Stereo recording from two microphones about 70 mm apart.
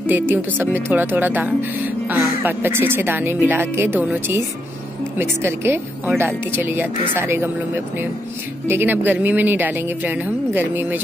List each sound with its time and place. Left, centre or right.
0.0 s speech: right